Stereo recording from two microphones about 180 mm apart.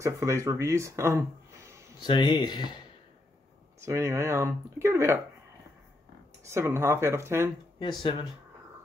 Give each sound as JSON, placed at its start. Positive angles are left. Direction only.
{"t": 0.0, "sound": "speech", "side_deg": -15}
{"t": 2.0, "sound": "speech", "side_deg": 25}
{"t": 3.8, "sound": "speech", "side_deg": -15}
{"t": 6.5, "sound": "speech", "side_deg": -15}
{"t": 7.8, "sound": "speech", "side_deg": 30}